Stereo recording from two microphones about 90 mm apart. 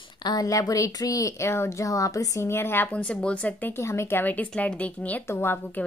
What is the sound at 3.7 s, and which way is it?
A woman's voice, 30° left (ahead or behind).